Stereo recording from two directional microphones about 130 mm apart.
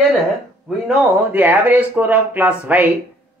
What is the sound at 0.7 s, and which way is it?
Speech, 10° right (ahead or behind).